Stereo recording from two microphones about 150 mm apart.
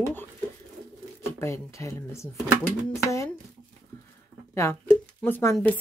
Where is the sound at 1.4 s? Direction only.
20° left (ahead or behind).